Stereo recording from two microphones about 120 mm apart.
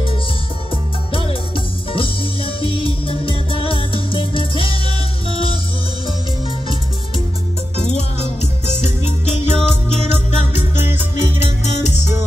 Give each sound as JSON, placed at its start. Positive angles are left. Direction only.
{"t": 1.9, "sound": "music", "side_deg": 45}
{"t": 7.7, "sound": "music", "side_deg": 65}
{"t": 8.4, "sound": "music", "side_deg": -20}
{"t": 8.8, "sound": "music", "side_deg": 65}